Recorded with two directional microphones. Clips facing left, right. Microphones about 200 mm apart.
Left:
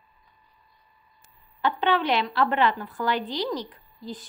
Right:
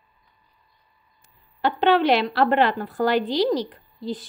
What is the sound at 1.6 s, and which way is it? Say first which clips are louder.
A woman's voice: right 5 dB; 80° right.